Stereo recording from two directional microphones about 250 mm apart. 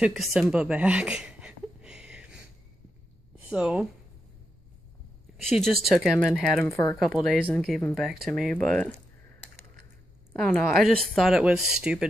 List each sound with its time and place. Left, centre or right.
0.0 s a sound: centre
3.4 s speech: centre
5.5 s speech: centre
6.6 s speech: centre
7.0 s speech: centre
10.4 s speech: centre